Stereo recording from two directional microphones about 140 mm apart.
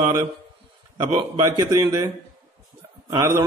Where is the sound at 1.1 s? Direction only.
30° right (ahead or behind).